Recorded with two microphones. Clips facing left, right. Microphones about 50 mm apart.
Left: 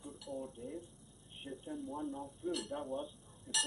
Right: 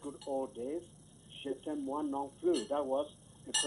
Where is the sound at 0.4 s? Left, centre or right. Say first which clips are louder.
Right 7 dB; right.